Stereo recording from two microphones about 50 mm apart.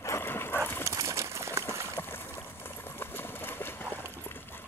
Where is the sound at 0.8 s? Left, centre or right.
Right.